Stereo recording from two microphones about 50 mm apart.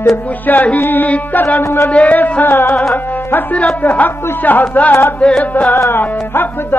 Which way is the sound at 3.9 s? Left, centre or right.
Left.